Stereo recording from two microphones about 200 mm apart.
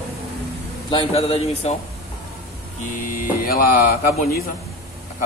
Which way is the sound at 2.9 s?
40° left (ahead or behind).